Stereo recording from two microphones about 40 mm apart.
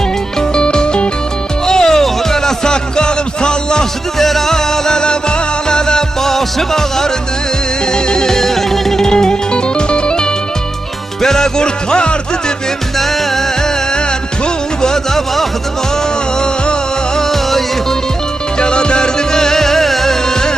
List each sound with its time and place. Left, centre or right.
0.4 s music: left
4.2 s music: centre; by 10.2 s left
11.2 s music: centre
14.8 s music: centre
17.2 s music: centre
18.6 s music: left